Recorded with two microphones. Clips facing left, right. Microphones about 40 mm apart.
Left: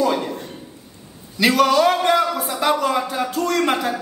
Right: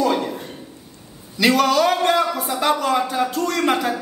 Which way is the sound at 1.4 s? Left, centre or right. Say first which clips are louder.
Left 1 dB; centre.